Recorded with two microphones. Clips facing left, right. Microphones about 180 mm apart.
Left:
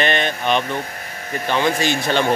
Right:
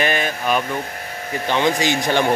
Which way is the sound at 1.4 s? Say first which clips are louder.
Even; 15° right (ahead or behind).